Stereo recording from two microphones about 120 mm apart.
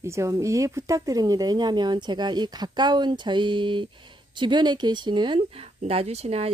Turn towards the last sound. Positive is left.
turn(degrees=-60)  # may be behind; listen again after turning